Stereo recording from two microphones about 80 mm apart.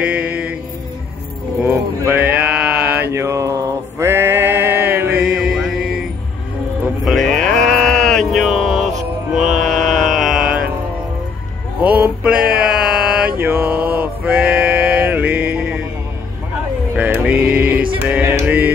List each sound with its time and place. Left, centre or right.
0.0 s mantra: centre
1.7 s a sound: right
2.1 s mantra: centre
3.1 s mantra: right
4.0 s a sound: right
5.1 s mantra: centre
7.1 s a sound: centre
11.8 s male singing: centre
13.4 s male singing: right
16.9 s music: centre